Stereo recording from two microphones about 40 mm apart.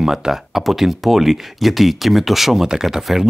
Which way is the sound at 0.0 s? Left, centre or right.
Centre.